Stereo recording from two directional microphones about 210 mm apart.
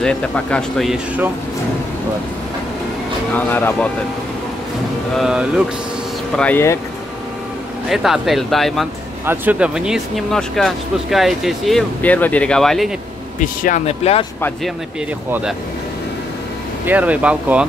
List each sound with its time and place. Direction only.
0.0 s speech: 5° left (ahead or behind)
3.3 s speech: 10° left (ahead or behind)
5.1 s speech: 5° right (ahead or behind)
6.3 s speech: 10° left (ahead or behind)
7.9 s speech: centre (ahead or behind)
9.2 s speech: 10° right (ahead or behind)
13.4 s speech: 40° left (ahead or behind)
16.8 s speech: 5° right (ahead or behind)